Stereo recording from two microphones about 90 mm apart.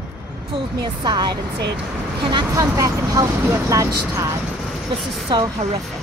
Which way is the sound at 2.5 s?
40° right (ahead or behind).